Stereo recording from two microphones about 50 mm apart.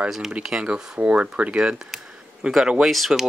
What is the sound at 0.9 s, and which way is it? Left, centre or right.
Speech, right.